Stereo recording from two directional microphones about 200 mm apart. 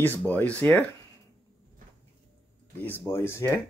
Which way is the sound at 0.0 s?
10° left (ahead or behind).